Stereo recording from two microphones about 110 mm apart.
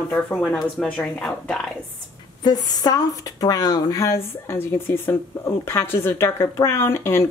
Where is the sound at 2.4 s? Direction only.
40° left (ahead or behind); by 7.2 s 25° left (ahead or behind).